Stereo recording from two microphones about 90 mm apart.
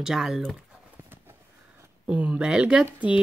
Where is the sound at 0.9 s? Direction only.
25° right (ahead or behind).